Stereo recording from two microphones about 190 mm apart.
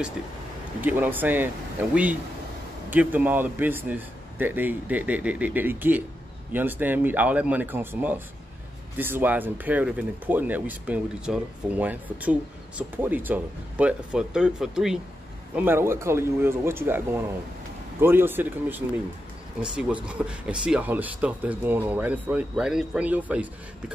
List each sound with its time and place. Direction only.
0.7 s speech: 10° right (ahead or behind)